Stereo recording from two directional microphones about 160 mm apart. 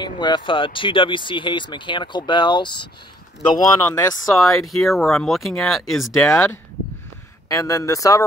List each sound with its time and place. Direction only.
0.0 s speech: 30° left (ahead or behind)
4.4 s speech: centre (ahead or behind)
7.4 s speech: 20° left (ahead or behind)